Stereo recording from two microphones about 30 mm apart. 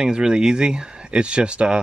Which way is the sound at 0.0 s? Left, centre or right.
Right.